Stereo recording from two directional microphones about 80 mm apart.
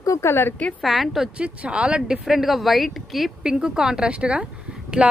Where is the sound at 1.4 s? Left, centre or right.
Centre.